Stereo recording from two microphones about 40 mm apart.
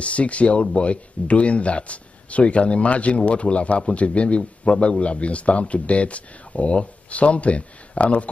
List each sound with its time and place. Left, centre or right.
0.0 s speech: left